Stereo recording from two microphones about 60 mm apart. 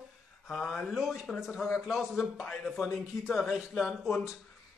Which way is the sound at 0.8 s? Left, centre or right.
Centre.